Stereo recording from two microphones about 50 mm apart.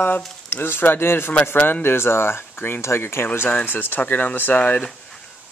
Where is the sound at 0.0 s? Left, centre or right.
Left.